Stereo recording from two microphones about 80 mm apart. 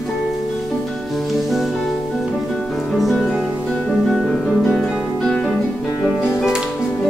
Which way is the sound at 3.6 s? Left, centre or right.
Centre.